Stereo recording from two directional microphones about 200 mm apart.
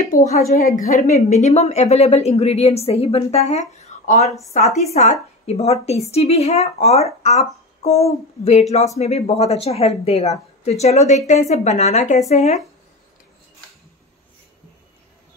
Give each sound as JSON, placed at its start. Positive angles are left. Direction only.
{"t": 0.0, "sound": "a woman's voice", "side_deg": 35}